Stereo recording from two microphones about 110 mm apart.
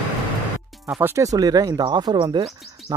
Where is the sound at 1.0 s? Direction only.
25° right (ahead or behind); by 2.4 s 40° right (ahead or behind).